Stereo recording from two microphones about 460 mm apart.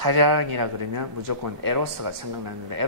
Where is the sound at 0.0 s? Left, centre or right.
Right.